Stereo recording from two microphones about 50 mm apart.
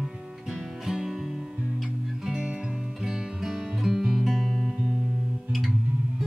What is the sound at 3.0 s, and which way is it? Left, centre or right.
Music, centre.